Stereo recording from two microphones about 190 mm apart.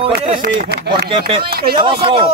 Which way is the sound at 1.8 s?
30° right (ahead or behind).